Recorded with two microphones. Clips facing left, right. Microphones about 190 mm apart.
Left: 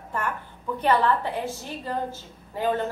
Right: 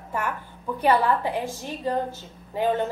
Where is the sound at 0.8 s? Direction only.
10° right (ahead or behind).